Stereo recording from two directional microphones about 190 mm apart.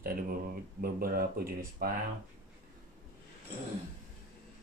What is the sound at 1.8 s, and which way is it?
Speech, 50° right (ahead or behind).